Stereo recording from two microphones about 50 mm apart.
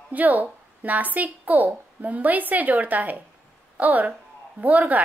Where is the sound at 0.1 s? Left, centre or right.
Right.